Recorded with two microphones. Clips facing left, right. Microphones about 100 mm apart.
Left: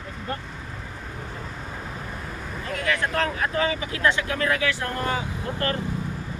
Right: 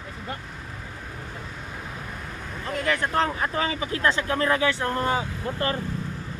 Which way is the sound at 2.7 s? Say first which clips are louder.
Right 1 dB; 30° right (ahead or behind).